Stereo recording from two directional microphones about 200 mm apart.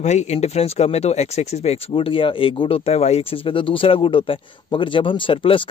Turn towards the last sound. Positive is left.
turn(degrees=25)  # may be behind; listen again after turning